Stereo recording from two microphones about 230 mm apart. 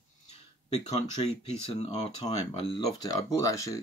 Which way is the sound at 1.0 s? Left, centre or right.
Left.